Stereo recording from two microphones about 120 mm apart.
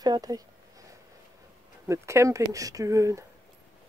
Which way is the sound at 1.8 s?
25° right (ahead or behind).